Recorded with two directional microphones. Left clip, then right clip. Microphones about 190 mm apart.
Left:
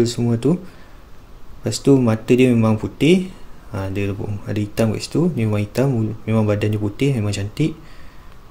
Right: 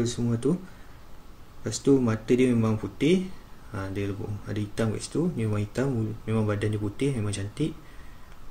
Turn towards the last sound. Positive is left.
turn(degrees=25)  # may be behind; listen again after turning